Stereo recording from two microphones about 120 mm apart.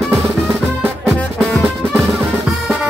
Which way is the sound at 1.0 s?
Centre (ahead or behind).